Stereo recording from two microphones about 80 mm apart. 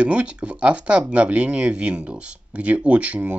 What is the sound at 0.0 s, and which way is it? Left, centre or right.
Speech, centre.